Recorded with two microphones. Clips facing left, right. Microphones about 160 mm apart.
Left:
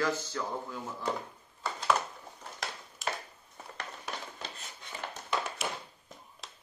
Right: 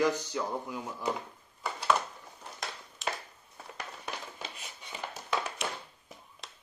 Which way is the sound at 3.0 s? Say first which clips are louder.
Even; centre (ahead or behind).